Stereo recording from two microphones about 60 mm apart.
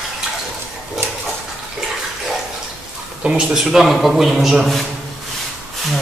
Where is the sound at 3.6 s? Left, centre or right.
Centre.